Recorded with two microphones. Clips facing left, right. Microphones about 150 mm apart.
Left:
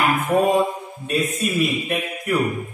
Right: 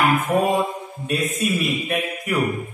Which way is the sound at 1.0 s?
Centre (ahead or behind).